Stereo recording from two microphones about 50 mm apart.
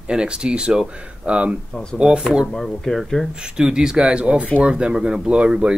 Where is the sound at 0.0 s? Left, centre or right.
Centre.